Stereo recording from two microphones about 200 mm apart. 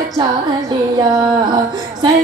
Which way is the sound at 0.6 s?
20° right (ahead or behind).